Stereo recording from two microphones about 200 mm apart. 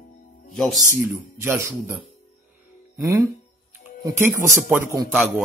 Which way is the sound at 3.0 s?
15° right (ahead or behind).